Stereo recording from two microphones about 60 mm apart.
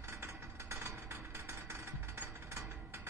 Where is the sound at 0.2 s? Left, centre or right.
Right.